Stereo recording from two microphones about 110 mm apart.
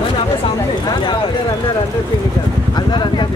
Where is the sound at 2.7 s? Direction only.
45° left (ahead or behind).